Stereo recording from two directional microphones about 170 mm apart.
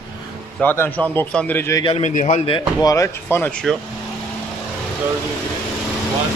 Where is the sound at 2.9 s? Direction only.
15° left (ahead or behind).